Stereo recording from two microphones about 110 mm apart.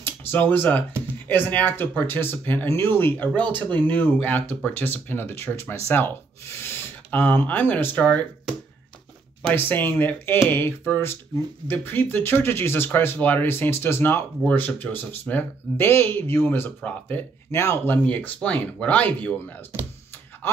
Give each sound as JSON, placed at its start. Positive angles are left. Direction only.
{"t": 0.0, "sound": "speech", "side_deg": 15}
{"t": 9.5, "sound": "speech", "side_deg": 15}
{"t": 17.5, "sound": "speech", "side_deg": 25}
{"t": 17.9, "sound": "speech", "side_deg": 15}